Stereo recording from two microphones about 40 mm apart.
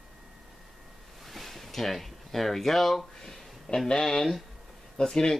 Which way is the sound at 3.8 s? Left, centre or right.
Centre.